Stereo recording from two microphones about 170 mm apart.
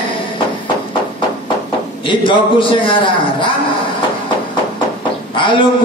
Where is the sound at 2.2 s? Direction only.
30° left (ahead or behind).